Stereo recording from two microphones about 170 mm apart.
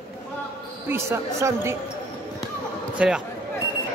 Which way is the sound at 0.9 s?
15° right (ahead or behind).